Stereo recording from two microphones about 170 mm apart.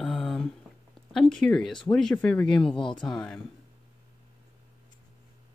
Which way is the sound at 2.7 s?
30° left (ahead or behind).